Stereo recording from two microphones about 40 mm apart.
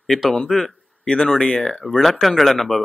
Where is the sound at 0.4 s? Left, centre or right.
Centre.